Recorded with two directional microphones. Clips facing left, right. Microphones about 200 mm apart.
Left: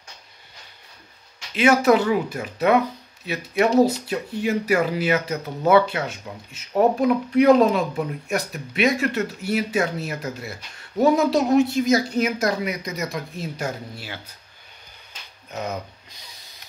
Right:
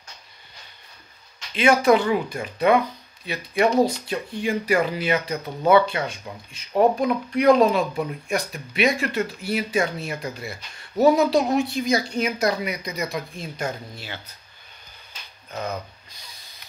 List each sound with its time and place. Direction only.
1.5 s speech: 5° left (ahead or behind)
15.5 s speech: 20° left (ahead or behind)